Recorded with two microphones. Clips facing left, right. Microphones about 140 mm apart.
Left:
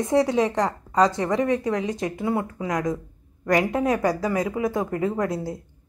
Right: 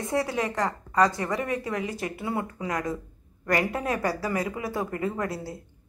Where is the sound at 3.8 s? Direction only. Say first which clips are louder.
Left 6 dB; centre (ahead or behind).